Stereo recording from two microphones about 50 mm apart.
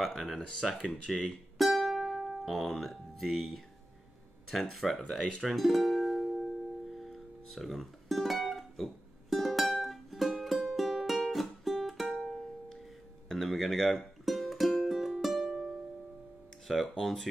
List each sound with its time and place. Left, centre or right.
0.0 s speech: centre
1.8 s music: centre
4.5 s speech: centre
5.4 s music: centre
16.8 s speech: centre